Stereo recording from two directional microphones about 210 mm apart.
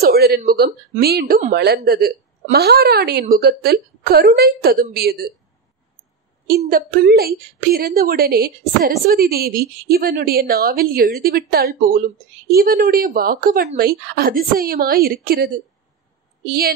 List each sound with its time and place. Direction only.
0.0 s a sound: 50° right (ahead or behind)
0.9 s a woman's voice: 45° right (ahead or behind)
6.6 s a woman's voice: 45° right (ahead or behind)